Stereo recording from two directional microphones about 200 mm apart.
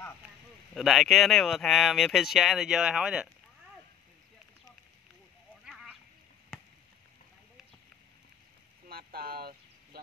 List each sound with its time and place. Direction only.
0.7 s speech: centre (ahead or behind)
5.7 s a sound: 5° right (ahead or behind)
8.8 s vehicle: 50° right (ahead or behind)